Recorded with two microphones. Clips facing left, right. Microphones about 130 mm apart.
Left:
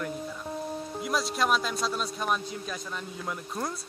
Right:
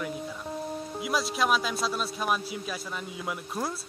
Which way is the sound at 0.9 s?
5° right (ahead or behind).